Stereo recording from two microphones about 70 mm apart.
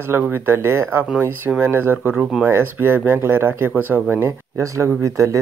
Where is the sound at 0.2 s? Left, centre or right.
Right.